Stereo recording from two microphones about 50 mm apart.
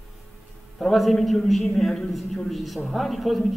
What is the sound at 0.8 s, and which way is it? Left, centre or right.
A man's voice, centre.